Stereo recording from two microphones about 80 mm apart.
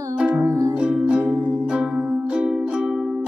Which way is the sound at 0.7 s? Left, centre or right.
Centre.